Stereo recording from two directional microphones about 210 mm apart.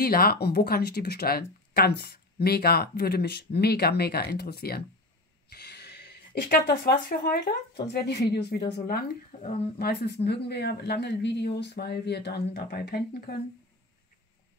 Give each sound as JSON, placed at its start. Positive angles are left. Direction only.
{"t": 0.0, "sound": "speech", "side_deg": 45}